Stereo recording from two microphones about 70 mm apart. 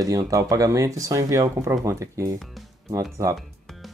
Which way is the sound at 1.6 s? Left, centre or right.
Right.